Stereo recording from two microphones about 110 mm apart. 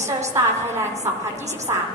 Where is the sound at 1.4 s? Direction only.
90° right.